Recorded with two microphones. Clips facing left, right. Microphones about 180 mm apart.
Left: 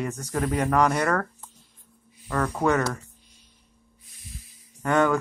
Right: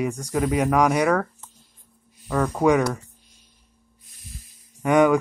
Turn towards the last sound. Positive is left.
turn(degrees=-15)  # may be behind; listen again after turning